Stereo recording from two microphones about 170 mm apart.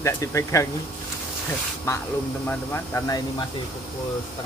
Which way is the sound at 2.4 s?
15° left (ahead or behind).